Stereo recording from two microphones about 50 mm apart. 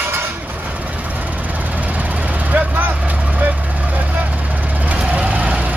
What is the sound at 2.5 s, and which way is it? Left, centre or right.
Vehicle, right.